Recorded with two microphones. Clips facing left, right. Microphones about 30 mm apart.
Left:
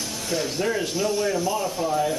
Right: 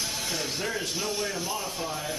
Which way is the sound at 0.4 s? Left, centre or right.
Centre.